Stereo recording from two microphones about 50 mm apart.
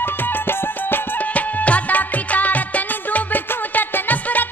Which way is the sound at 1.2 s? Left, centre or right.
Left.